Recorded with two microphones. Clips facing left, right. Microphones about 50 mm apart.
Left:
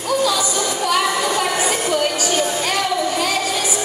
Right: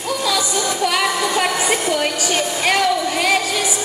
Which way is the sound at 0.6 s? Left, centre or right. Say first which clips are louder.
Left 1 dB; right.